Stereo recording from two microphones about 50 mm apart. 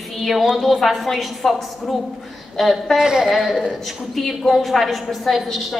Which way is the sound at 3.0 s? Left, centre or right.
Centre.